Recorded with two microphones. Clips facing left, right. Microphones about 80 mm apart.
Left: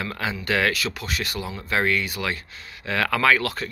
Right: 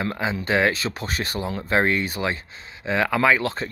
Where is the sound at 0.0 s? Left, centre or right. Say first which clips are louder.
Right 3 dB; right.